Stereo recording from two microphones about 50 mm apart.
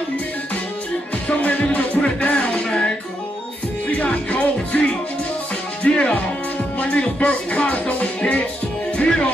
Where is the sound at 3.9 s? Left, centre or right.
Left.